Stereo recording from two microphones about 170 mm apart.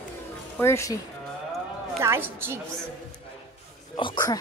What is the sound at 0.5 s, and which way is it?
Speech, 15° left (ahead or behind).